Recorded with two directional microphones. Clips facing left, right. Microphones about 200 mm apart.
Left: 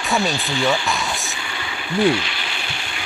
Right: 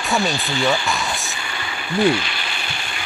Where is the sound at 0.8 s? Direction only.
Centre (ahead or behind).